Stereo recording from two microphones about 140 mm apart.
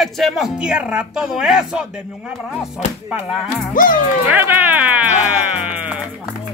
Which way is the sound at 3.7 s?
80° left.